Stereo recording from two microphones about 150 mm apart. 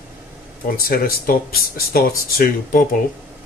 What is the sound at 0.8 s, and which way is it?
Speech, 80° left.